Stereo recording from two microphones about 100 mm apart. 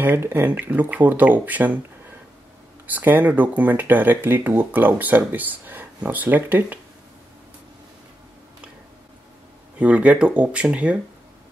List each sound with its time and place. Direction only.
0.0 s speech: 20° right (ahead or behind)
2.9 s speech: 20° right (ahead or behind)
9.8 s speech: 15° right (ahead or behind)